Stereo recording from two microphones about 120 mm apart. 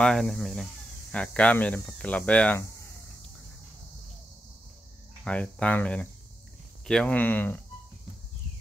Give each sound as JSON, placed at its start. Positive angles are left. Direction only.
{"t": 0.0, "sound": "speech", "side_deg": 5}
{"t": 5.2, "sound": "speech", "side_deg": 10}